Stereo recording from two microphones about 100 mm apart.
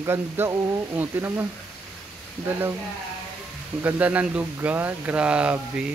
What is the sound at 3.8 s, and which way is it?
Speech, 15° right (ahead or behind).